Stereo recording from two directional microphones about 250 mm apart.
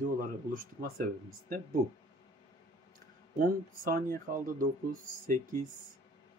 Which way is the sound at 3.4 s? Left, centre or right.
Right.